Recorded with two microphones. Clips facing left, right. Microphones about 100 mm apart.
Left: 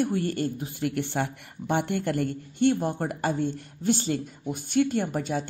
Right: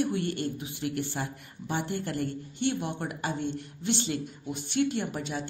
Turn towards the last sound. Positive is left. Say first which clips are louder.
# left 5 dB
turn(degrees=45)  # may be behind; listen again after turning